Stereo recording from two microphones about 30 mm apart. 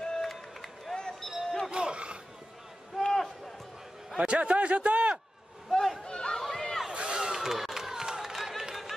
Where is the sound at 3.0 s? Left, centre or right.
Centre.